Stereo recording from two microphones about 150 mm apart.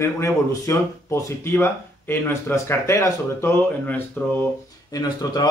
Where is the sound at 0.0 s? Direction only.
20° left (ahead or behind).